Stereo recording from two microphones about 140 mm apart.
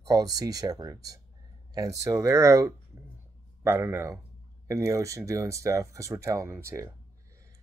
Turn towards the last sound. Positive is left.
turn(degrees=-20)  # may be behind; listen again after turning